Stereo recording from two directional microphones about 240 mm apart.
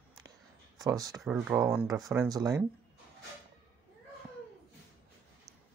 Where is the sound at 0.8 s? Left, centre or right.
Centre.